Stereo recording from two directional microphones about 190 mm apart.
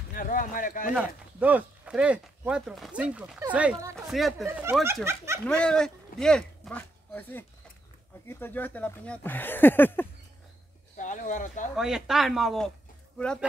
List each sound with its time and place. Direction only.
0.1 s speech: 45° left (ahead or behind)
0.9 s speech: 10° right (ahead or behind)
4.5 s speech: 10° right (ahead or behind)
5.4 s speech: 5° left (ahead or behind)
11.0 s speech: 40° left (ahead or behind)
11.7 s speech: centre (ahead or behind)